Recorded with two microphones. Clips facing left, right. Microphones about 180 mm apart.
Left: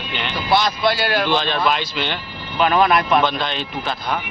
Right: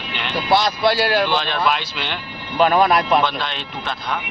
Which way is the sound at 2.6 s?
35° right (ahead or behind).